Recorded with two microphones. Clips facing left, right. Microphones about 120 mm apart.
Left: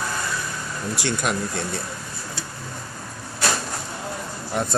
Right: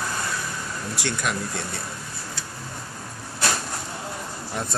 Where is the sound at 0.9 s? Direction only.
20° left (ahead or behind).